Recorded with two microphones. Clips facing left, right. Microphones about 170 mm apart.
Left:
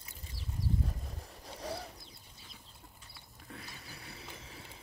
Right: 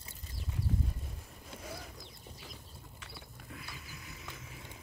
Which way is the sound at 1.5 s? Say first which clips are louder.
Left 5 dB; 35° left (ahead or behind).